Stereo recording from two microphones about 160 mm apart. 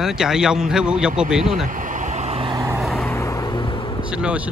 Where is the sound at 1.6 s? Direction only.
55° right (ahead or behind).